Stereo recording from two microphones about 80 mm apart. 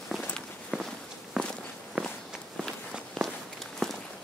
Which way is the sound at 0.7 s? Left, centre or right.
Centre.